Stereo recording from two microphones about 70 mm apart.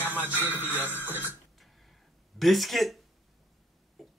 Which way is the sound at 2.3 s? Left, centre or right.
Centre.